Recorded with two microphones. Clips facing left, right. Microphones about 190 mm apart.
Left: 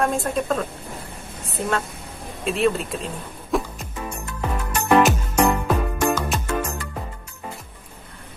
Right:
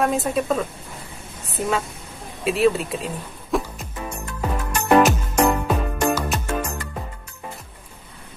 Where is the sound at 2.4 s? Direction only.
5° right (ahead or behind).